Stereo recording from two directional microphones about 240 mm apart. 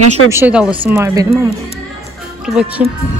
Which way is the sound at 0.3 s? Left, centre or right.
Centre.